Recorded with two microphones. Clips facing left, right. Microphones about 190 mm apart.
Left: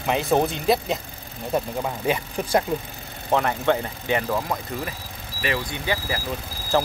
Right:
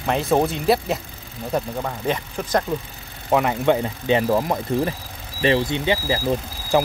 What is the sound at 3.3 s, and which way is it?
Speech, 10° right (ahead or behind).